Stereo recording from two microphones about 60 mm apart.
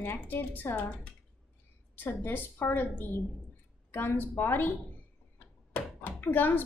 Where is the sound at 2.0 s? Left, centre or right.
Left.